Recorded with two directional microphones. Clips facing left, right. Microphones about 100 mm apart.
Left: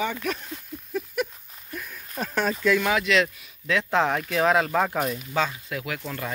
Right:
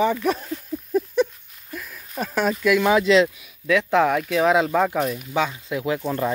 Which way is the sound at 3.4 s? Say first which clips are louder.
Right 5 dB; 10° right (ahead or behind).